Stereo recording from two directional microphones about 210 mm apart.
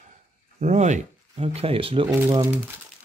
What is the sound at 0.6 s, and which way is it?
Speech, 35° right (ahead or behind).